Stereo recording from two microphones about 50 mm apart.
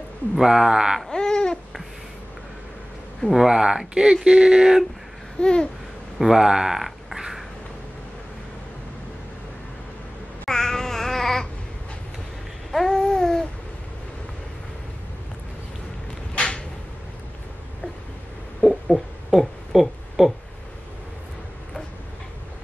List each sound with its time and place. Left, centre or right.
0.4 s speech: centre
1.1 s babbling: centre
3.3 s speech: centre
5.4 s babbling: centre
6.1 s speech: centre
10.4 s babbling: centre
12.7 s babbling: centre
16.3 s a sound: centre
18.6 s a sound: centre